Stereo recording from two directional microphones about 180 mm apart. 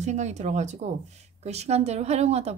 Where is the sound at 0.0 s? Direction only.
40° right (ahead or behind).